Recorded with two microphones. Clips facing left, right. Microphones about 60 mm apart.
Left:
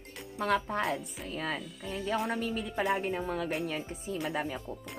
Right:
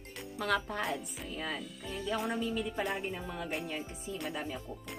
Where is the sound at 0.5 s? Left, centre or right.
Left.